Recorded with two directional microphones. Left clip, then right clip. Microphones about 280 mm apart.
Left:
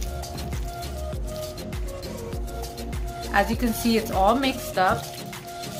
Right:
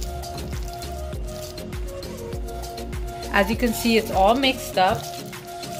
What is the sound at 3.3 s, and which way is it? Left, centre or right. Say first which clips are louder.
Speech: right 2 dB; centre.